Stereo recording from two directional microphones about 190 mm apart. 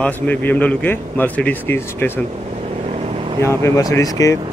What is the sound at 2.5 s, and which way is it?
Vehicle, 30° right (ahead or behind).